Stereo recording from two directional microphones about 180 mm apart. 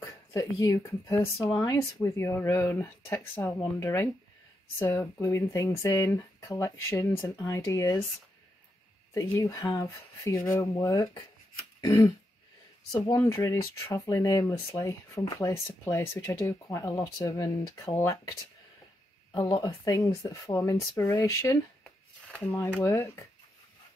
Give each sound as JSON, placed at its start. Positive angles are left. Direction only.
{"t": 0.3, "sound": "speech", "side_deg": 15}
{"t": 9.1, "sound": "speech", "side_deg": 15}
{"t": 11.8, "sound": "throat clearing", "side_deg": 20}
{"t": 13.1, "sound": "speech", "side_deg": 15}
{"t": 19.3, "sound": "speech", "side_deg": 20}